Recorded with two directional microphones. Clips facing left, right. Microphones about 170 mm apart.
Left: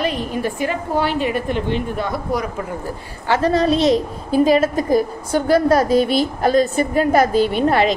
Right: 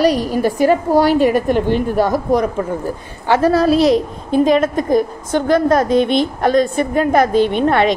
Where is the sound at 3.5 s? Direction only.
5° right (ahead or behind).